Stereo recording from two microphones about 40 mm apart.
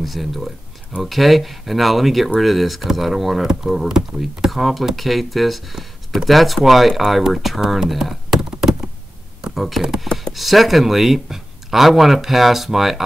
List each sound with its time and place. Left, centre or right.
0.0 s speech: centre
8.0 s computer keyboard: centre
9.6 s speech: centre